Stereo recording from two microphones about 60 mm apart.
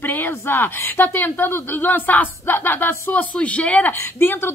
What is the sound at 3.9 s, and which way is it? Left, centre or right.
Speech, left.